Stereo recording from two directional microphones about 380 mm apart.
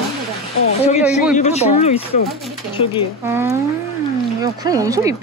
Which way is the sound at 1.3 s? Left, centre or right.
Centre.